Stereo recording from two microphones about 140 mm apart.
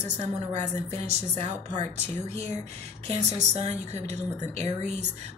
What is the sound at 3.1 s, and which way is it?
A woman's voice, 50° right (ahead or behind).